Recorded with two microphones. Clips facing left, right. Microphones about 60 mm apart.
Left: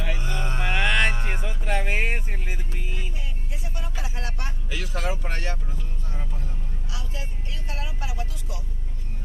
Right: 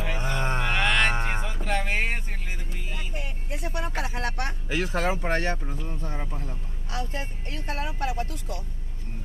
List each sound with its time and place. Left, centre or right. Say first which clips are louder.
0.1 s mantra: right 3 dB; right
0.6 s music: left 2 dB; centre
1.6 s a sound: left 1 dB; centre
3.2 s speech: right 5 dB; right
4.6 s speech: right 4 dB; right